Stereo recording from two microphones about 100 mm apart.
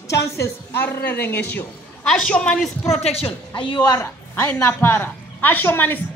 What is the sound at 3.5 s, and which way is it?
Speech, 55° left (ahead or behind).